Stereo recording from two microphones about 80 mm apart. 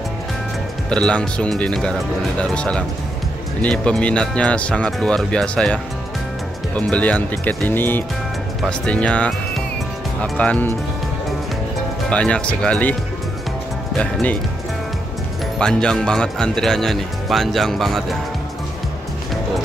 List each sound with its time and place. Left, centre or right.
0.8 s speech: centre
8.6 s speech: centre
10.3 s speech: centre
12.1 s speech: centre
15.6 s speech: centre